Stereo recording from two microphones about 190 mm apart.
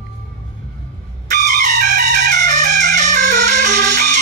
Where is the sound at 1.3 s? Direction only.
40° right (ahead or behind).